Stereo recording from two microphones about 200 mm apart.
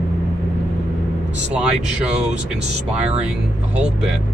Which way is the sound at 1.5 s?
5° right (ahead or behind).